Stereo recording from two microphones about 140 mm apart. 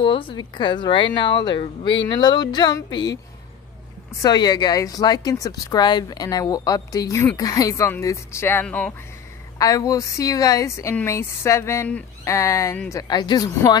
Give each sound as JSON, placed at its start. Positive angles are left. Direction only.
{"t": 0.0, "sound": "speech", "side_deg": 35}
{"t": 4.2, "sound": "a woman's voice", "side_deg": 30}
{"t": 9.6, "sound": "a woman's voice", "side_deg": 25}